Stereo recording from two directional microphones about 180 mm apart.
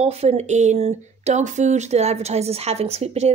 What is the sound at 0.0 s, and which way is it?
Speech, 35° right (ahead or behind).